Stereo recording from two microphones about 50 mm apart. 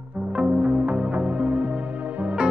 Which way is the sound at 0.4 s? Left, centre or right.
Right.